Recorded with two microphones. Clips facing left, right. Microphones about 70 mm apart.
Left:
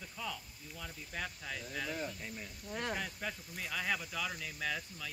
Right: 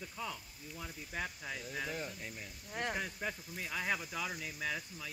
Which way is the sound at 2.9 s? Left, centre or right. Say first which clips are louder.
Right 1 dB; right.